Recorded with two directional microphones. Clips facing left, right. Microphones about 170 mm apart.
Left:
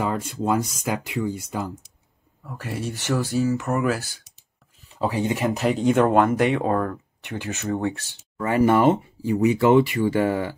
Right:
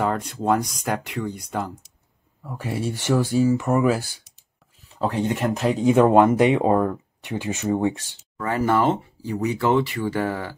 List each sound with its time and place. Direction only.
0.0 s speech: 5° left (ahead or behind)
2.4 s speech: 10° right (ahead or behind)
4.9 s speech: 5° left (ahead or behind)
5.9 s speech: 10° right (ahead or behind)
8.4 s speech: 20° left (ahead or behind)